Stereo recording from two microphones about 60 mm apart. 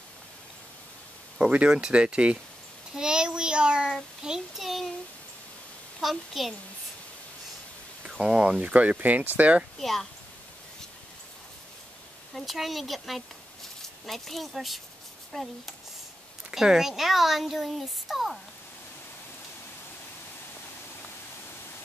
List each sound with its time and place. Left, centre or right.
1.4 s speech: centre
5.9 s speech: centre
8.1 s speech: centre
9.8 s speech: centre
12.4 s speech: centre
16.5 s speech: centre